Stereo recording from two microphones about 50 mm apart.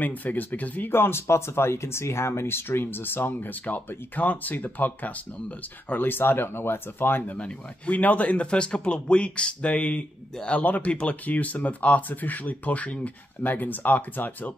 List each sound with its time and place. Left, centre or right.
0.0 s speech: left
1.2 s speech: left
7.3 s speech: left